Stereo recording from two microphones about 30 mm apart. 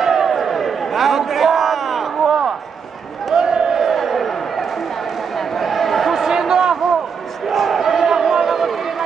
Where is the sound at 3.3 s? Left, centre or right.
Right.